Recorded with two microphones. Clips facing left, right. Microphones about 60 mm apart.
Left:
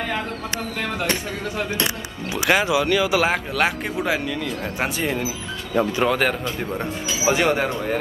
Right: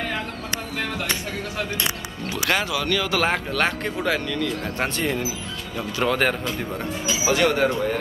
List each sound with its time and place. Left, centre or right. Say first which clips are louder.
2.2 s a man's voice: left 4 dB; centre
7.2 s speech: even; centre